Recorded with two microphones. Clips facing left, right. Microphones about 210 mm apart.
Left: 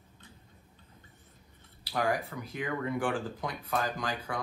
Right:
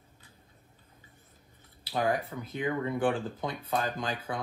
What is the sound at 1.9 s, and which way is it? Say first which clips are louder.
Speech: right 1 dB; 25° right (ahead or behind).